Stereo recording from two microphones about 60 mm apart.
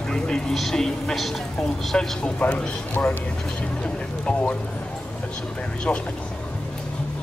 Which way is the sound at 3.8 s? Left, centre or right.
Centre.